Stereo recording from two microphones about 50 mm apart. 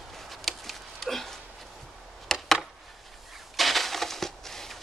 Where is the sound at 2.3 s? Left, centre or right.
Centre.